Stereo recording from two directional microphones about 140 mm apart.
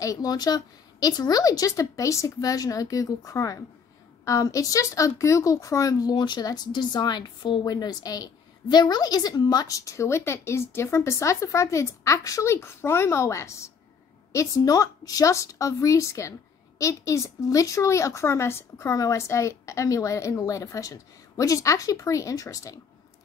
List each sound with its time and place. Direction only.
0.0 s speech: 25° left (ahead or behind)